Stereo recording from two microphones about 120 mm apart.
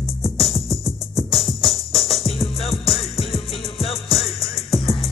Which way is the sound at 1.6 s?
50° left (ahead or behind).